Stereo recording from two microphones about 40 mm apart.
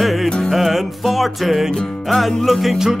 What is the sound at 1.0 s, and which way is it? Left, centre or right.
Speech, centre.